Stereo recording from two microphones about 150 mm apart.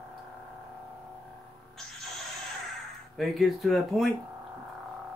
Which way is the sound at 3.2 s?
Centre (ahead or behind).